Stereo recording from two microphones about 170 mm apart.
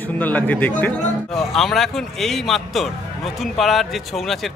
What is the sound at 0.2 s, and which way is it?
A man's voice, 10° left (ahead or behind).